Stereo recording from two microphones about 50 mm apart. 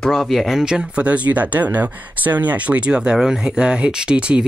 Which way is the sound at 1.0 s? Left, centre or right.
Right.